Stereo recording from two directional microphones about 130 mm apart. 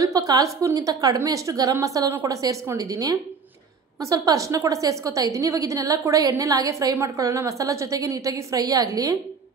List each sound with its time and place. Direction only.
0.0 s a woman's voice: 25° right (ahead or behind)